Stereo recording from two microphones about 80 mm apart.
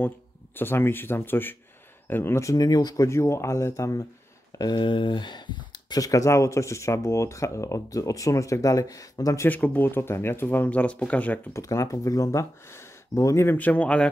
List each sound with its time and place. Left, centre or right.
0.6 s speech: left
2.4 s speech: left
3.1 s speech: left
4.6 s speech: left
9.5 s speech: left
11.5 s speech: left
13.5 s speech: left